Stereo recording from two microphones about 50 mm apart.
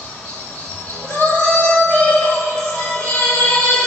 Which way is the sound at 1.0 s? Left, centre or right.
Left.